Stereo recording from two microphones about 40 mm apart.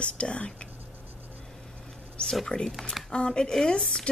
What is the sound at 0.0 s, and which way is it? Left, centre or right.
Speech, left.